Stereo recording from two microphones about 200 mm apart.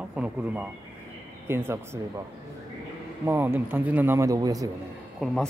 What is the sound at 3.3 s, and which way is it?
Speech, 10° right (ahead or behind).